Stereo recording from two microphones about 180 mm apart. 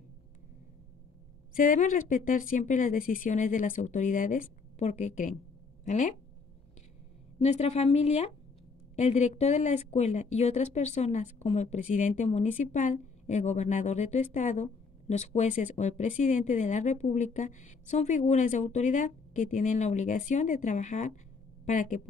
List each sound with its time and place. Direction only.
1.6 s a woman's voice: 45° left (ahead or behind)
7.3 s a woman's voice: 35° left (ahead or behind)